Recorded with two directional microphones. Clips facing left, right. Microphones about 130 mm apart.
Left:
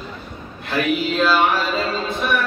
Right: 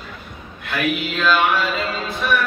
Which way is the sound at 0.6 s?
35° left (ahead or behind).